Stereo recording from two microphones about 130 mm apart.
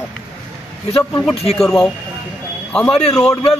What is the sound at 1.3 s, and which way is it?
Speech, centre (ahead or behind).